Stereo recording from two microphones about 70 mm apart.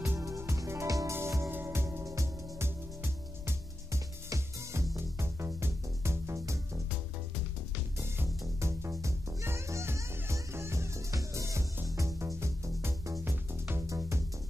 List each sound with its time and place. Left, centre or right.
0.2 s music: right
7.7 s music: right
13.2 s music: right